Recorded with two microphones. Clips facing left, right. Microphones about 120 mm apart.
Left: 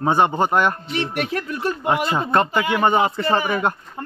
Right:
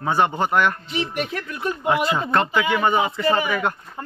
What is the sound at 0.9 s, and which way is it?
Speech, 65° left (ahead or behind).